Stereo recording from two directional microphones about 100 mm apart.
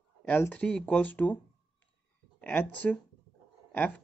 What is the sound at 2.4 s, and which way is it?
Speech, 15° left (ahead or behind).